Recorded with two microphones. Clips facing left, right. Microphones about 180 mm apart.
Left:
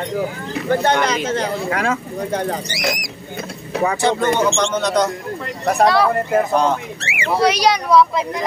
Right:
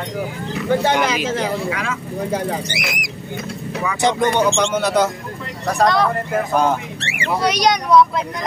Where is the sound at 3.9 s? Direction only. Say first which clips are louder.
Right 3 dB; 15° right (ahead or behind).